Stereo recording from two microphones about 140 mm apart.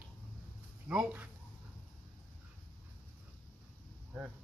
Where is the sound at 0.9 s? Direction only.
10° right (ahead or behind).